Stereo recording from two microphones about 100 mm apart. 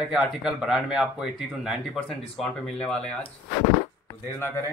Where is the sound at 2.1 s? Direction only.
5° left (ahead or behind).